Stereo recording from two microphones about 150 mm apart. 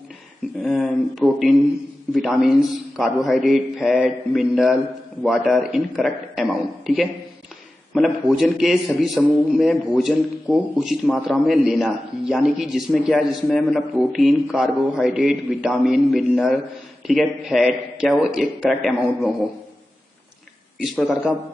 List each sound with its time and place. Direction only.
0.6 s a man's voice: centre (ahead or behind)
20.8 s a man's voice: 5° right (ahead or behind)